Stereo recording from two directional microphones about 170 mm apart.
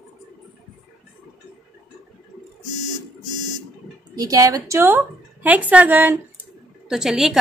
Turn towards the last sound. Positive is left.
turn(degrees=0)  # may be behind; listen again after turning